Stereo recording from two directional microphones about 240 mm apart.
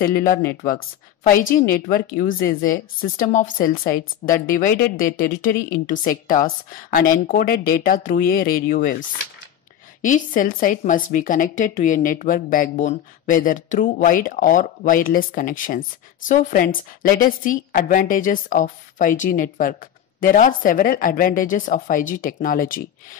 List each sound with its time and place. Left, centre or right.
0.0 s a woman's voice: left
10.0 s a woman's voice: left